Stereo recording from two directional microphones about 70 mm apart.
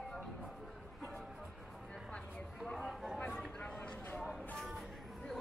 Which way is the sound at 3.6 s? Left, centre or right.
Centre.